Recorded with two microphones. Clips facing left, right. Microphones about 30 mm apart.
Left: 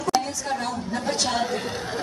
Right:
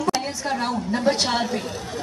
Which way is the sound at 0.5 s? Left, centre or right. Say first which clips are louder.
Right 3 dB; right.